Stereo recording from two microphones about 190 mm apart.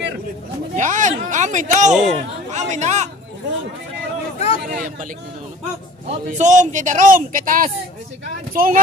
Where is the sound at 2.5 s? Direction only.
40° right (ahead or behind).